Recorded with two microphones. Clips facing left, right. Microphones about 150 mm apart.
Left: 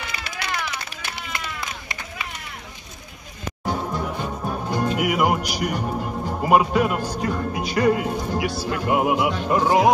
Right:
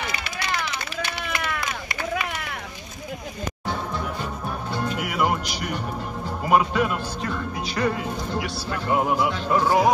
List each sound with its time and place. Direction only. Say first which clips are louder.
1.2 s chop: right 2 dB; 60° right (ahead or behind)
3.6 s music: left 4 dB; 15° left (ahead or behind)
4.9 s speech: left 3 dB; 10° left (ahead or behind)